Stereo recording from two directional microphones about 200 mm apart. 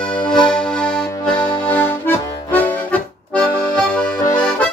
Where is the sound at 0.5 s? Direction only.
5° left (ahead or behind).